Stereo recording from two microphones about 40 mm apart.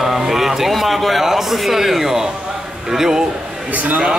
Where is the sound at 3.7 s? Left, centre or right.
Right.